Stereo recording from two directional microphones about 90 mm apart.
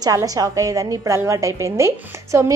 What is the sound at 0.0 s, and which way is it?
A woman's voice, 40° right (ahead or behind).